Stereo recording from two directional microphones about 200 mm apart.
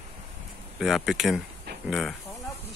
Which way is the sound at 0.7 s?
Centre (ahead or behind).